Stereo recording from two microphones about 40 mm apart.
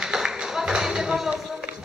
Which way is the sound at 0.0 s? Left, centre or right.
Centre.